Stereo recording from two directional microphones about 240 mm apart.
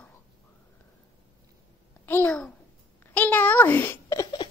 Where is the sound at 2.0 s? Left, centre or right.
Centre.